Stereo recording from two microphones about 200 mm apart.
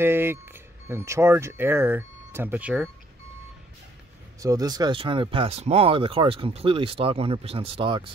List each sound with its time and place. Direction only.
0.0 s speech: 10° right (ahead or behind)
4.4 s speech: 15° right (ahead or behind)